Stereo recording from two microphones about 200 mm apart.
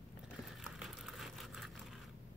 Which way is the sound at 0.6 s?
Centre (ahead or behind).